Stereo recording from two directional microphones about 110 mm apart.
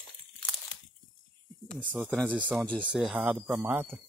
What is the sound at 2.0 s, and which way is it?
Speech, 5° left (ahead or behind).